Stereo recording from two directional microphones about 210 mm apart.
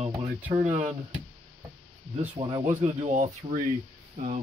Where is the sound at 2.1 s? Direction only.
25° right (ahead or behind).